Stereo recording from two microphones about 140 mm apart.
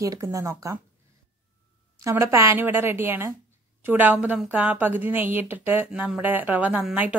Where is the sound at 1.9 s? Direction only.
20° right (ahead or behind).